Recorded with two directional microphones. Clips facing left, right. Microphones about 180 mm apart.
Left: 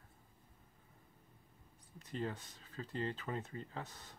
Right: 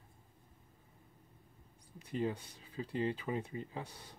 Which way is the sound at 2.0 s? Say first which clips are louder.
Right 5 dB; 10° right (ahead or behind).